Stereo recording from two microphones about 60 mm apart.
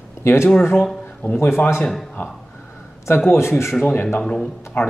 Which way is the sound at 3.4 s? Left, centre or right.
Left.